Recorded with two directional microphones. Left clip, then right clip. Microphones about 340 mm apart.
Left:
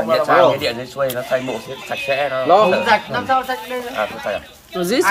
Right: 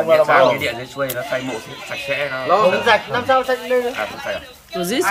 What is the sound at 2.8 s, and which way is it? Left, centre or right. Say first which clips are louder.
Speech: even; right.